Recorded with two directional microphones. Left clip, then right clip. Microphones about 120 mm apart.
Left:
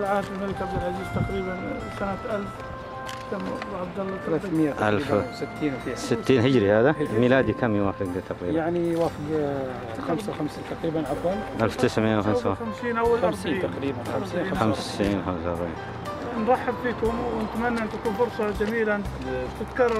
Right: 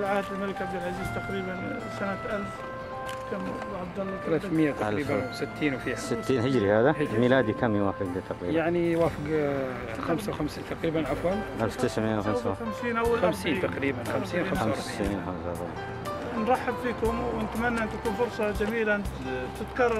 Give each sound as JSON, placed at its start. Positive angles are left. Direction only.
{"t": 4.3, "sound": "speech", "side_deg": -30}
{"t": 4.7, "sound": "speech", "side_deg": 20}
{"t": 5.6, "sound": "speech", "side_deg": -30}
{"t": 6.0, "sound": "speech", "side_deg": 20}
{"t": 8.5, "sound": "speech", "side_deg": -35}
{"t": 11.1, "sound": "speech", "side_deg": 0}
{"t": 11.5, "sound": "speech", "side_deg": 20}
{"t": 12.8, "sound": "speech", "side_deg": 0}
{"t": 13.3, "sound": "speech", "side_deg": -25}
{"t": 14.6, "sound": "speech", "side_deg": 20}
{"t": 16.4, "sound": "speech", "side_deg": -5}
{"t": 18.4, "sound": "speech", "side_deg": -15}